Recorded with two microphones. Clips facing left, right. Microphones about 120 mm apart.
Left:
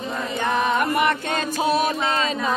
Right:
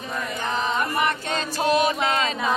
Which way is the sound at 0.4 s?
60° left (ahead or behind).